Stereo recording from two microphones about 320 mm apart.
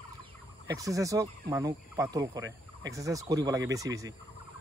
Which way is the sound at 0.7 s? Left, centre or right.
Centre.